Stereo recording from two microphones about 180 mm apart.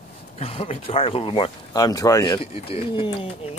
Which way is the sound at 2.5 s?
30° left (ahead or behind).